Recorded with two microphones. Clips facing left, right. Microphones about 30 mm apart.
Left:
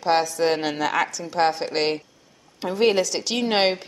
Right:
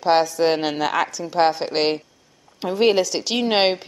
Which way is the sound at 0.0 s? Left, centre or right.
Centre.